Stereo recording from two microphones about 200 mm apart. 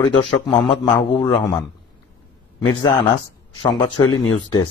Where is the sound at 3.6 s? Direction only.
20° left (ahead or behind).